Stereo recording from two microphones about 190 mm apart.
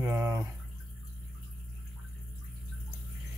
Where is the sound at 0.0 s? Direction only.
10° right (ahead or behind).